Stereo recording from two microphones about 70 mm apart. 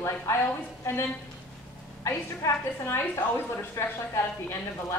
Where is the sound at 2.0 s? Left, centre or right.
Left.